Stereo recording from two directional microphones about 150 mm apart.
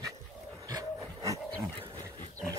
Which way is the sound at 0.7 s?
25° right (ahead or behind).